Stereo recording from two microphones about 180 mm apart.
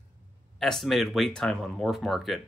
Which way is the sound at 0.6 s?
Centre (ahead or behind).